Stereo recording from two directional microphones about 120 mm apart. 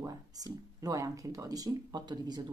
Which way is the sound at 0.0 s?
30° right (ahead or behind).